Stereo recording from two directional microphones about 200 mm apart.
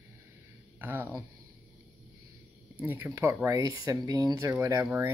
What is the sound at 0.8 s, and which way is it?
Speech, 10° right (ahead or behind).